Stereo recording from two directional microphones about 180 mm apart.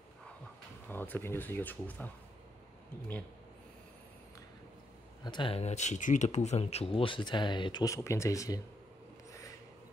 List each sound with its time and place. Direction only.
0.8 s speech: 10° left (ahead or behind)
5.2 s speech: 25° left (ahead or behind)